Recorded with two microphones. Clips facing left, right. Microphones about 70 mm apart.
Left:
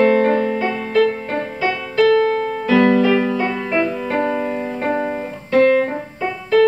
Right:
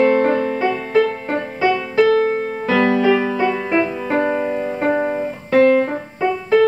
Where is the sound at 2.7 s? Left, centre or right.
Centre.